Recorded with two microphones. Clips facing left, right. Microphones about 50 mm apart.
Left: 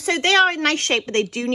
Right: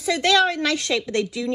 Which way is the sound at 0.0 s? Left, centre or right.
Left.